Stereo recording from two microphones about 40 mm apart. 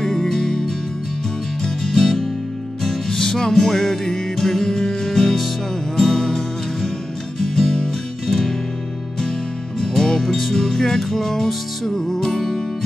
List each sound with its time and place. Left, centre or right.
0.0 s music: centre
9.8 s music: centre